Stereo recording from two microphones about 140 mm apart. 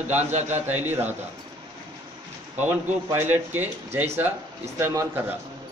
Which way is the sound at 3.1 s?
15° right (ahead or behind).